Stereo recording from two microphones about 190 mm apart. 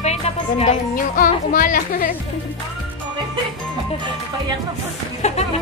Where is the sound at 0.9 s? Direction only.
45° left (ahead or behind).